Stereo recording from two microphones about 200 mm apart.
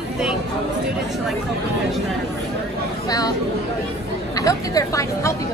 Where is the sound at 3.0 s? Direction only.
20° left (ahead or behind).